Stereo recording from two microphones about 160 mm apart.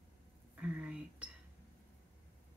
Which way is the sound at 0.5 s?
10° right (ahead or behind).